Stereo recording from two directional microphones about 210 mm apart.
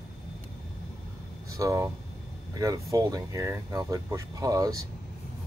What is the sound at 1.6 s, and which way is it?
Speech, 15° right (ahead or behind).